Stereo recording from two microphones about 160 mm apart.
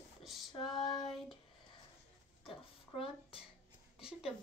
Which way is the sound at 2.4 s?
35° left (ahead or behind).